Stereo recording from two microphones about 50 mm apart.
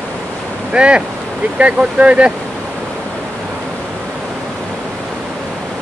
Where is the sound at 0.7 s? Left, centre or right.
Right.